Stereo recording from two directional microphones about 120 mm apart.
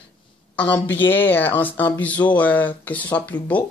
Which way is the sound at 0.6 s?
10° left (ahead or behind).